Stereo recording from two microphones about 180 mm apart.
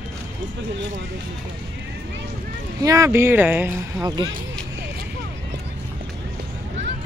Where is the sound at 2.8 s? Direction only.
20° right (ahead or behind).